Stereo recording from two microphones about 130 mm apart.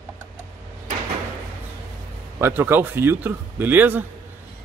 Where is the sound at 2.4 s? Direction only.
15° right (ahead or behind).